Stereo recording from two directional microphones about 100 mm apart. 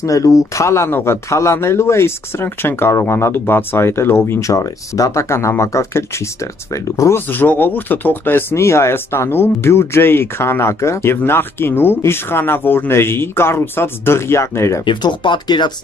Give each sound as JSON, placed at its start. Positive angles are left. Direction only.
{"t": 0.0, "sound": "speech", "side_deg": 35}
{"t": 14.9, "sound": "speech", "side_deg": 50}